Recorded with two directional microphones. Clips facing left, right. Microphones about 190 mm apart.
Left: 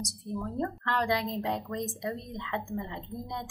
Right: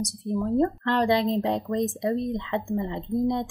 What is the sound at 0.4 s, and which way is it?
Speech, 30° right (ahead or behind).